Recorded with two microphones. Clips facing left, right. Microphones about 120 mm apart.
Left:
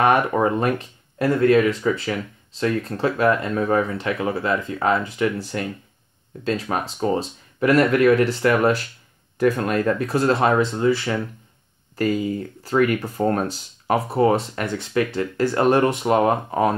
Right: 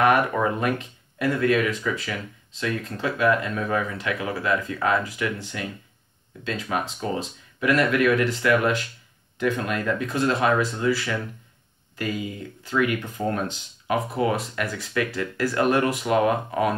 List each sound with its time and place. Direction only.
0.0 s speech: 25° left (ahead or behind)
5.5 s speech: 45° left (ahead or behind); by 11.2 s 25° left (ahead or behind)
11.9 s speech: 40° left (ahead or behind)